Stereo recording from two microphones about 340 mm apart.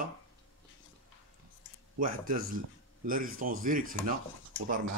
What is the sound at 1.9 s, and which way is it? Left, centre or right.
Speech, right.